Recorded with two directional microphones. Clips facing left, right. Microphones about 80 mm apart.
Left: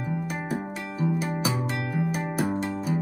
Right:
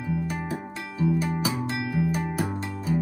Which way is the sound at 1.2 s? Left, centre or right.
Centre.